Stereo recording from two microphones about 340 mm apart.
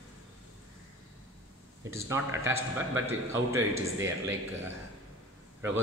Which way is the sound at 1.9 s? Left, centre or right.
Centre.